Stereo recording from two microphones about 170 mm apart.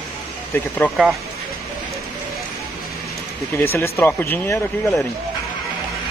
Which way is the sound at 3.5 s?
15° left (ahead or behind).